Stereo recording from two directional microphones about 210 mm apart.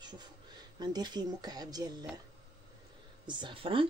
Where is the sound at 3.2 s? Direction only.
20° right (ahead or behind).